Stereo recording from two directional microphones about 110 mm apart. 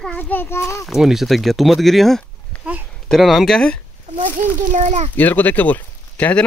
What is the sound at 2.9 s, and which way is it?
Speech, centre (ahead or behind).